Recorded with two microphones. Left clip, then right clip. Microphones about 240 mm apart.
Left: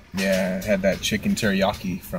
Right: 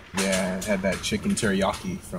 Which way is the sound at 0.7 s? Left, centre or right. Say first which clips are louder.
Left 6 dB; centre.